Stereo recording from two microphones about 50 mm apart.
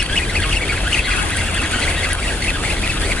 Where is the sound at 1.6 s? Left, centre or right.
Centre.